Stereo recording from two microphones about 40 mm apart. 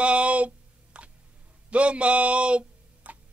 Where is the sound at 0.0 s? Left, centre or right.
Right.